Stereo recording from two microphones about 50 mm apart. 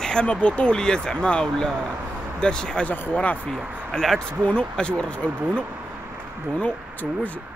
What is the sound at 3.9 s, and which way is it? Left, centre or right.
Speech, centre.